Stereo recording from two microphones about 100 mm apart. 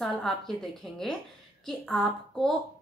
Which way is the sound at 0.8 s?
5° left (ahead or behind).